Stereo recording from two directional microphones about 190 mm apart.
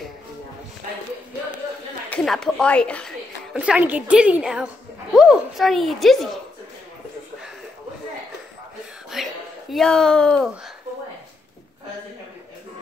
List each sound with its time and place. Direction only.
2.0 s speech: 5° left (ahead or behind)
3.5 s speech: 5° right (ahead or behind)
9.1 s a sound: centre (ahead or behind)